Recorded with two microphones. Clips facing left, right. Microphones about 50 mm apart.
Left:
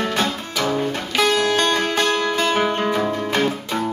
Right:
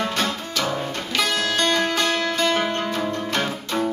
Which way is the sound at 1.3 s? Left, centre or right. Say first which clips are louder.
Left 4 dB; left.